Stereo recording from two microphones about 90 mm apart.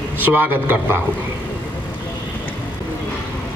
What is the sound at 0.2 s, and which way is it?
Speech, 20° right (ahead or behind).